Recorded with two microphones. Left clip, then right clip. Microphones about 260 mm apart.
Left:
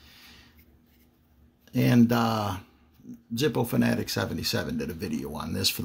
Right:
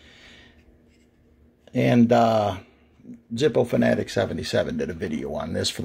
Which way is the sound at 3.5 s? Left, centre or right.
Left.